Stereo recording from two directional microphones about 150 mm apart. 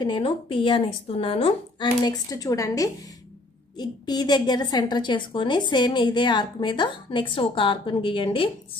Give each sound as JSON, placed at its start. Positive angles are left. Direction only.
{"t": 0.0, "sound": "a woman's voice", "side_deg": 35}
{"t": 2.0, "sound": "a woman's voice", "side_deg": 25}